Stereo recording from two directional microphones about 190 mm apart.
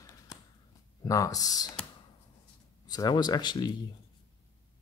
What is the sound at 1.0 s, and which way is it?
Speech, 15° left (ahead or behind).